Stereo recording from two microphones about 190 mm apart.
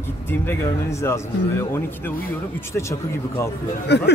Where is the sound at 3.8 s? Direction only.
60° left (ahead or behind).